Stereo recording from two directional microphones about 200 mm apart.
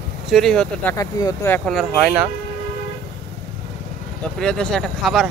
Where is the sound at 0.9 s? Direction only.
20° left (ahead or behind); by 2.2 s 5° right (ahead or behind).